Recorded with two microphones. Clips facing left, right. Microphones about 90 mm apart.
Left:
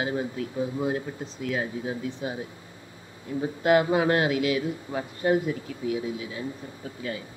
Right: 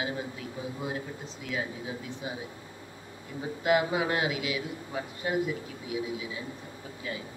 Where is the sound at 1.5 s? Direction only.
45° left (ahead or behind).